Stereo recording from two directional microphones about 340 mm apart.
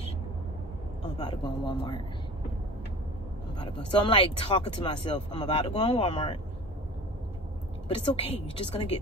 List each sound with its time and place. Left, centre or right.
1.1 s speech: centre
3.5 s speech: centre
8.0 s speech: centre